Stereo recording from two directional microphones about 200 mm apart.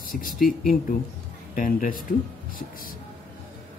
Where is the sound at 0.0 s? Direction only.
45° left (ahead or behind).